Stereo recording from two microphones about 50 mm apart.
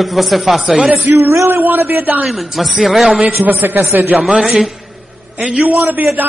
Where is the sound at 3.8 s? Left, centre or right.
Right.